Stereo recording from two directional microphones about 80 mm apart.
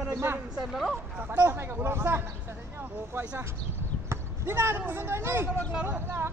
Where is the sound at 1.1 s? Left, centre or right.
Right.